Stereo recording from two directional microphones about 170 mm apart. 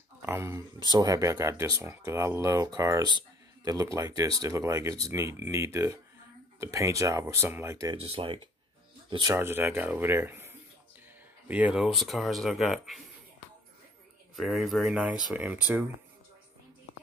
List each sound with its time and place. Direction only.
0.2 s speech: 15° right (ahead or behind)
8.0 s speech: 30° right (ahead or behind)
9.1 s speech: 20° right (ahead or behind); by 13.0 s centre (ahead or behind)
14.3 s speech: centre (ahead or behind)